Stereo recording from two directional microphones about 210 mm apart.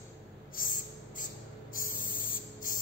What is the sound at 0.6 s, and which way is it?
Snort, 40° left (ahead or behind).